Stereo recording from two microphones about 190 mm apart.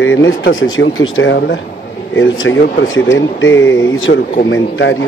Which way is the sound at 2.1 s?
90° left.